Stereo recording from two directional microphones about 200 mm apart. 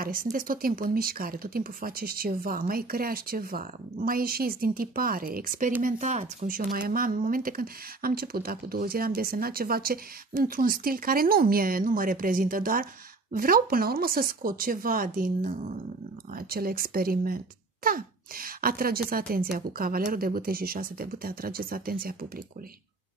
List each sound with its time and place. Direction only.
0.0 s a child's voice: 45° right (ahead or behind)